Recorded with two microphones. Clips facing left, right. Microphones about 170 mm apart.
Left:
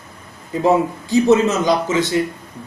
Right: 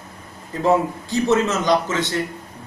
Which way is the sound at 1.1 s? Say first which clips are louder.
Left 5 dB; 10° left (ahead or behind).